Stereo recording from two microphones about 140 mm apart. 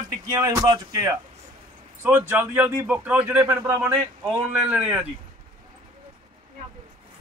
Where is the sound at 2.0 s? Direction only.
15° right (ahead or behind).